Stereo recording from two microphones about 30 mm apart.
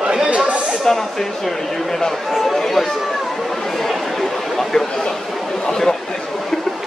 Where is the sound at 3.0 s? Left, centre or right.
Centre.